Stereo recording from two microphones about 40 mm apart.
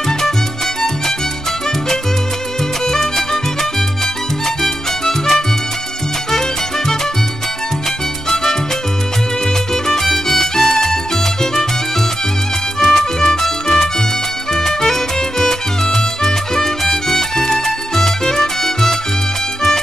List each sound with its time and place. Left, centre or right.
2.9 s music: centre
4.6 s music: centre
9.8 s music: centre
12.8 s music: centre